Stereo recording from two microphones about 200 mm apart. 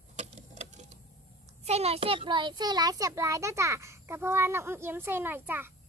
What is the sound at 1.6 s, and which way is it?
A child's voice, 30° right (ahead or behind).